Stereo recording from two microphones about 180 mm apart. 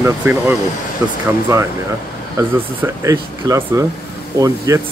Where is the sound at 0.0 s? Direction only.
10° right (ahead or behind).